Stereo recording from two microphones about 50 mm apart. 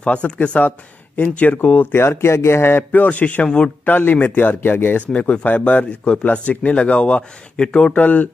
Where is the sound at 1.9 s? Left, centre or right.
Left.